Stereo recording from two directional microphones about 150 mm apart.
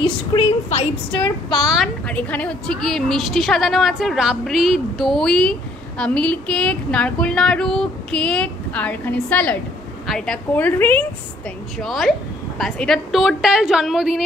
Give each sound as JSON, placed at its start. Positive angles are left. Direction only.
{"t": 0.0, "sound": "a woman's voice", "side_deg": 40}
{"t": 1.6, "sound": "a woman's voice", "side_deg": 0}
{"t": 2.1, "sound": "a woman's voice", "side_deg": 10}
{"t": 11.8, "sound": "a woman's voice", "side_deg": 0}